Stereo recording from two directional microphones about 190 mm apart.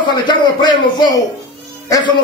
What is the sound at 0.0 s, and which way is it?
Speech, 25° left (ahead or behind).